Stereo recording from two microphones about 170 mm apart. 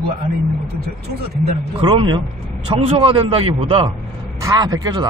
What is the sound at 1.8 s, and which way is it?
Speech, 30° right (ahead or behind).